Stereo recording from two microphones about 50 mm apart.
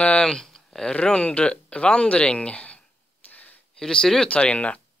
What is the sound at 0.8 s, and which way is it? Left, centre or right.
Speech, left.